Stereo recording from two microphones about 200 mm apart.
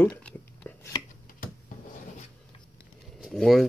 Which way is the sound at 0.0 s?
10° left (ahead or behind).